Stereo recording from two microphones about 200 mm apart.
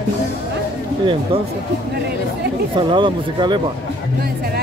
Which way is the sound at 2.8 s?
25° right (ahead or behind).